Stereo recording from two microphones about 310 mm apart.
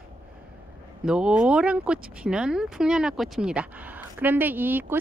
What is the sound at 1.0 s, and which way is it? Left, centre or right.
Speech, centre.